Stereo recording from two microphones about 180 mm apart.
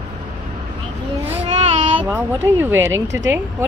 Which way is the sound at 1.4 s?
35° right (ahead or behind).